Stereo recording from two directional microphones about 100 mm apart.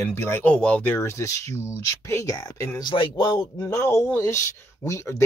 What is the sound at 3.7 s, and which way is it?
Speech, 30° left (ahead or behind).